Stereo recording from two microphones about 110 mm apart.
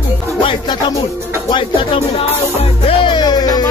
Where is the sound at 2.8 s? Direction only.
55° left (ahead or behind); by 3.6 s 35° left (ahead or behind).